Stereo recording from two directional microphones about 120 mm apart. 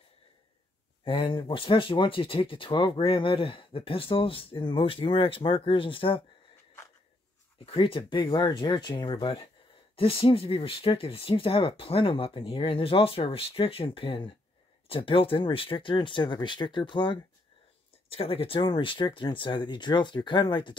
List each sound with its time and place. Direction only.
1.0 s speech: 50° left (ahead or behind)
7.5 s speech: 45° left (ahead or behind)
18.1 s speech: 55° left (ahead or behind)